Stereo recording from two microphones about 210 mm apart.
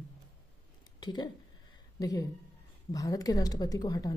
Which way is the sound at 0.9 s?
20° left (ahead or behind).